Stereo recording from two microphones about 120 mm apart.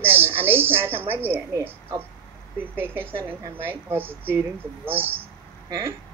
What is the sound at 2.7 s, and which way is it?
Speech, 15° right (ahead or behind).